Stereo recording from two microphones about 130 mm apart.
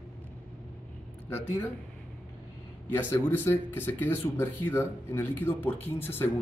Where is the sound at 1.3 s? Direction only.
15° left (ahead or behind).